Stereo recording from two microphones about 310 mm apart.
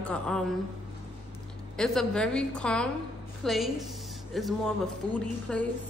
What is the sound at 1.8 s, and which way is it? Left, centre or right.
A woman's voice, centre.